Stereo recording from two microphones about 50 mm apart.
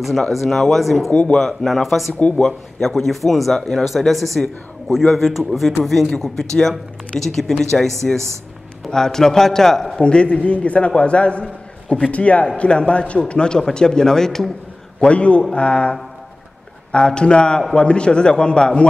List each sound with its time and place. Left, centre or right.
0.3 s speech: centre
1.1 s a man's voice: centre
1.4 s speech: centre
2.1 s a man's voice: left
2.4 s a man's voice: centre
15.0 s a man's voice: left